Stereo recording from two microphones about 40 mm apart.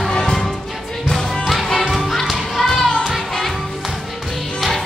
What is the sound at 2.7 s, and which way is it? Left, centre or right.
Music, centre.